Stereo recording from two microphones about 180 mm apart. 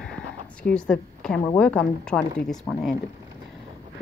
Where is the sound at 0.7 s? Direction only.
5° left (ahead or behind).